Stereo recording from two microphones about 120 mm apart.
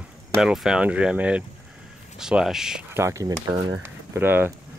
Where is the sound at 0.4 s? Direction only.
5° right (ahead or behind).